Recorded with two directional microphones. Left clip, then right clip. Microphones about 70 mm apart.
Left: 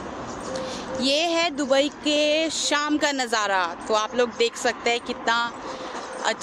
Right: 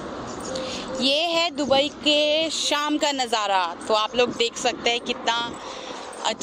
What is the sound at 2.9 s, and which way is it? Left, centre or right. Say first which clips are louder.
Speech: even; left.